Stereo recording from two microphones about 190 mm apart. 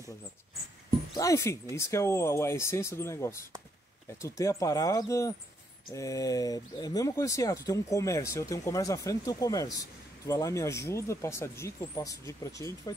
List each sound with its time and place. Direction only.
1.1 s speech: 15° left (ahead or behind)